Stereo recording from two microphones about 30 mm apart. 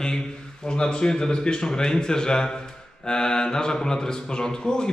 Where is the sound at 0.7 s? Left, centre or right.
Left.